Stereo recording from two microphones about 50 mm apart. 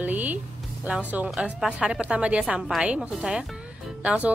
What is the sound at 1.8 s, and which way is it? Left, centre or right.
A woman's voice, centre.